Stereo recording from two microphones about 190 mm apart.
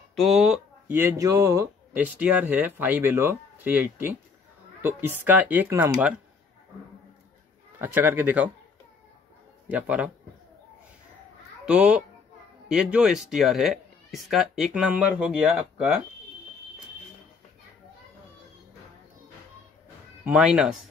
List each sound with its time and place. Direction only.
0.1 s a sound: centre (ahead or behind)
0.9 s speech: 15° right (ahead or behind)
7.8 s speech: 10° right (ahead or behind)
9.7 s speech: 5° right (ahead or behind)
11.6 s a child's voice: 5° right (ahead or behind)
20.2 s speech: 5° right (ahead or behind)